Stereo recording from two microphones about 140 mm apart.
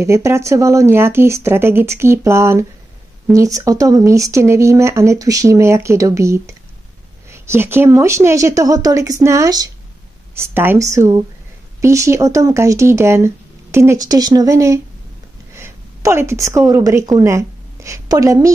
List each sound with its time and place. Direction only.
0.0 s a woman's voice: 20° right (ahead or behind)